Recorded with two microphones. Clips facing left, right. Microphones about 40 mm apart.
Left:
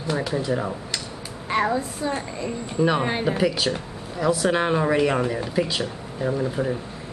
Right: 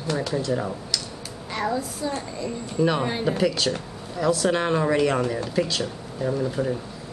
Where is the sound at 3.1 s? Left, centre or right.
Left.